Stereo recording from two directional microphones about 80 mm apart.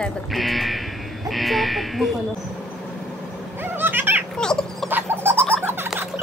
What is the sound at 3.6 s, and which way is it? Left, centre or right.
Cat, right.